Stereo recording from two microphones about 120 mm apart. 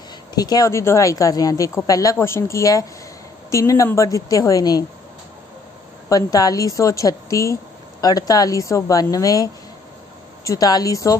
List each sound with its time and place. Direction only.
0.3 s a woman's voice: 35° left (ahead or behind)
6.0 s a woman's voice: 30° left (ahead or behind)